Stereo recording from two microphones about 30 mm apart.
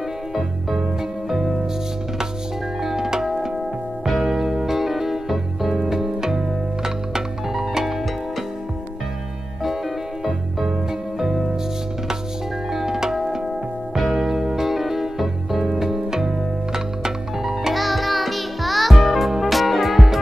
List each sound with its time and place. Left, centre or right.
0.3 s music: centre
2.8 s music: centre
4.0 s music: centre
11.1 s music: centre
12.7 s music: centre
15.6 s music: centre
17.7 s music: centre